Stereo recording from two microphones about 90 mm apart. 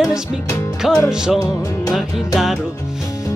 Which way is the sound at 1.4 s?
35° left (ahead or behind).